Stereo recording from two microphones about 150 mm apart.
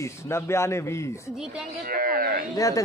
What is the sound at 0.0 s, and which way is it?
A man's voice, 20° left (ahead or behind).